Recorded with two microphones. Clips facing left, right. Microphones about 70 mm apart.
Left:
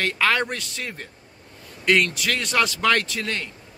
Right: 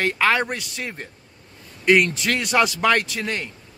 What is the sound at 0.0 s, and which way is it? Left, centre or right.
A man's voice, centre.